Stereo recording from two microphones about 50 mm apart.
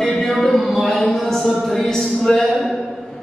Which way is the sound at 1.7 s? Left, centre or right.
Centre.